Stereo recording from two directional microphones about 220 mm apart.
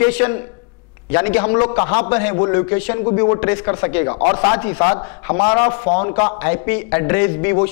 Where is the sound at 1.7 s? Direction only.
20° left (ahead or behind).